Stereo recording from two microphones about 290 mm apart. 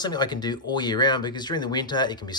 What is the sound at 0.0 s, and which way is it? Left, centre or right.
Speech, centre.